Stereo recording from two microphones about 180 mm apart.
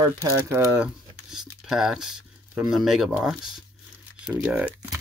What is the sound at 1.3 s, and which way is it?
Speech, 5° right (ahead or behind).